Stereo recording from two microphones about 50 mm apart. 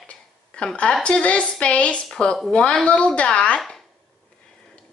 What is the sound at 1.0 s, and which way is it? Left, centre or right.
A woman's voice, left.